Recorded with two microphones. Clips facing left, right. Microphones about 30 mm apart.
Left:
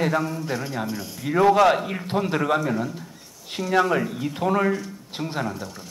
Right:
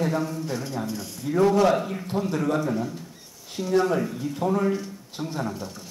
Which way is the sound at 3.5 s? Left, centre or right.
Left.